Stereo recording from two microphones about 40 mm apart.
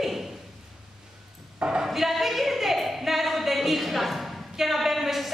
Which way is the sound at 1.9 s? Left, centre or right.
Centre.